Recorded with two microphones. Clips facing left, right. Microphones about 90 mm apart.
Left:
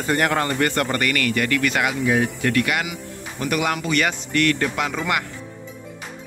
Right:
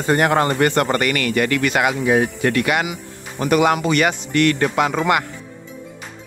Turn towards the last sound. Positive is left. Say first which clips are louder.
# right 6 dB
turn(degrees=-35)  # may be behind; listen again after turning